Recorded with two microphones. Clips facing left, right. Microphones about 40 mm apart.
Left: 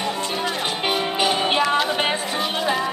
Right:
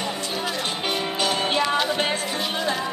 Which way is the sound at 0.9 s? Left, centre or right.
Centre.